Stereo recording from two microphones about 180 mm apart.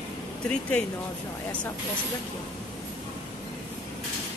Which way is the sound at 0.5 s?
5° left (ahead or behind).